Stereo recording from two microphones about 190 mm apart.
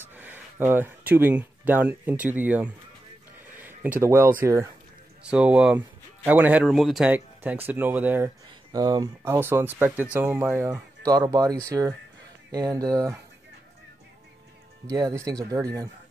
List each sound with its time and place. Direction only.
0.0 s speech: 10° right (ahead or behind)
3.5 s a sound: 10° right (ahead or behind)
4.0 s speech: 15° right (ahead or behind)
8.7 s speech: 20° right (ahead or behind)
14.9 s speech: 20° right (ahead or behind)